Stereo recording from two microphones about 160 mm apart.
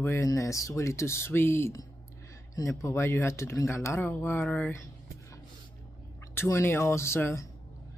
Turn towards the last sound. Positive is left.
turn(degrees=15)  # may be behind; listen again after turning